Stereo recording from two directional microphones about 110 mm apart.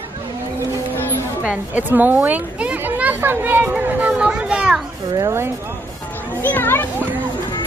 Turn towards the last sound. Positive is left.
turn(degrees=20)  # may be behind; listen again after turning